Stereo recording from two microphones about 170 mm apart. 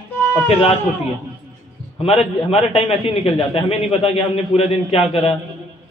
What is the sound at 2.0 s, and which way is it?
A man's voice, 35° left (ahead or behind).